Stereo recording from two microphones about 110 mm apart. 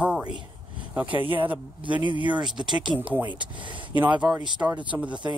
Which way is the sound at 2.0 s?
45° right (ahead or behind).